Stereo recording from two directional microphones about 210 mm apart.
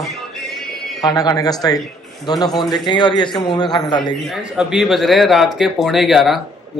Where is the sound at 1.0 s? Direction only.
15° left (ahead or behind).